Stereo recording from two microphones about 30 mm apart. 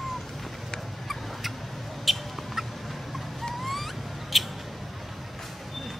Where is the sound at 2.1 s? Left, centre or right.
Centre.